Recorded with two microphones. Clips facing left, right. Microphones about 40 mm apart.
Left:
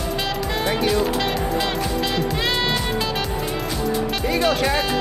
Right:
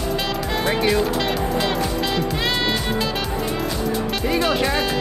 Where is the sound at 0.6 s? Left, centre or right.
Centre.